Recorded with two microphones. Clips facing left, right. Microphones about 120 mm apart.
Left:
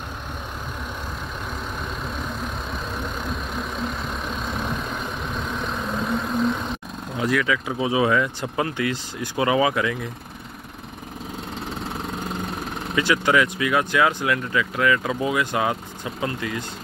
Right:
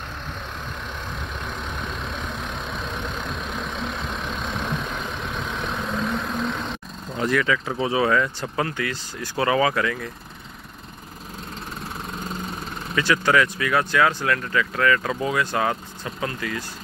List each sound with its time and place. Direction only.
2.1 s vehicle: 5° left (ahead or behind)
7.2 s speech: 5° left (ahead or behind)
12.9 s speech: 15° left (ahead or behind)